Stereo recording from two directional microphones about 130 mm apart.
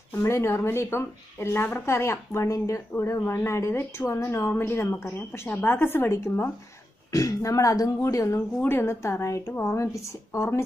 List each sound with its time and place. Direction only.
0.1 s speech: 20° left (ahead or behind)